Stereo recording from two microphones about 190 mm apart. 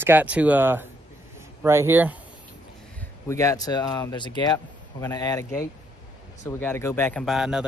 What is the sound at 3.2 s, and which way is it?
Speech, 15° left (ahead or behind).